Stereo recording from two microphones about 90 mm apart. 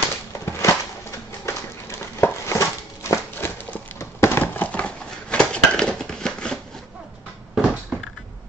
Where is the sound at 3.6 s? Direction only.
20° left (ahead or behind).